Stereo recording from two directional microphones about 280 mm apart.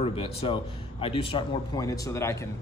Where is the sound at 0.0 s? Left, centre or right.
Centre.